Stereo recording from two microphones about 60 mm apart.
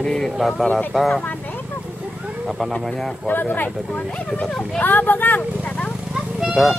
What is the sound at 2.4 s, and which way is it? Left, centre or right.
Speech, centre.